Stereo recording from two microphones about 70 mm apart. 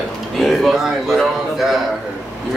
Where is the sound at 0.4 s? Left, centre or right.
Centre.